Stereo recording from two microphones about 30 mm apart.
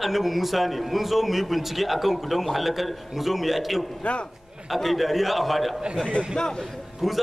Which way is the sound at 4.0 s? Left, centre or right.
Left.